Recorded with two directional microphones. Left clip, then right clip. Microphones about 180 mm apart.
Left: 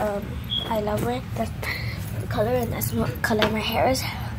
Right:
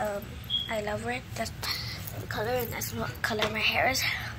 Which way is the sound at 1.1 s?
20° left (ahead or behind).